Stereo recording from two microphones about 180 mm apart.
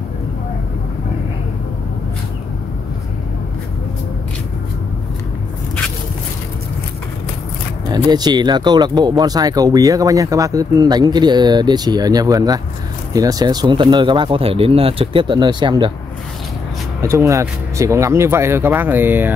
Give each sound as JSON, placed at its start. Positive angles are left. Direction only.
{"t": 8.1, "sound": "speech", "side_deg": -25}
{"t": 17.0, "sound": "speech", "side_deg": -15}